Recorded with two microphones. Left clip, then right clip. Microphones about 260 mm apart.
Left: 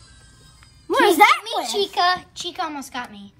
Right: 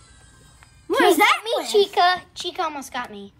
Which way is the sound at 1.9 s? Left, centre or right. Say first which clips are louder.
Right 1 dB; right.